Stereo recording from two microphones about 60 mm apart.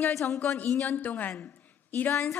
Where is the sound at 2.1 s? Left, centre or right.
Left.